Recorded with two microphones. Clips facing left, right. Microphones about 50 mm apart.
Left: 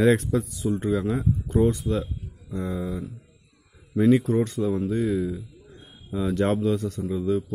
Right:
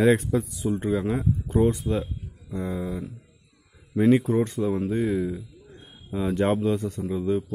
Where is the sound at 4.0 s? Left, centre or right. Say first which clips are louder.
Even; right.